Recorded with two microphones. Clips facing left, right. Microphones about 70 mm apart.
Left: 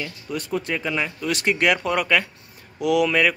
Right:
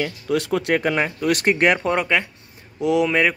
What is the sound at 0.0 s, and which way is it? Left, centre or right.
Speech, right.